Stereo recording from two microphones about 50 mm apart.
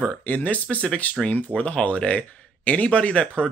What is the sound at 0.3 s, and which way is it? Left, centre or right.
Speech, left.